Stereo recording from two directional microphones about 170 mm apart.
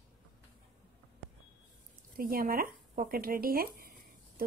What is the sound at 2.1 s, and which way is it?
Speech, 60° right (ahead or behind).